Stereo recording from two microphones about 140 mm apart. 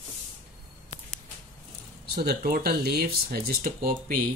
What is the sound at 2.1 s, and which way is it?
Speech, 90° right.